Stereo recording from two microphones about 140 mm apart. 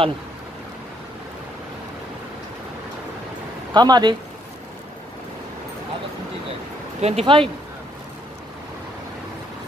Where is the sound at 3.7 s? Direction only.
30° right (ahead or behind).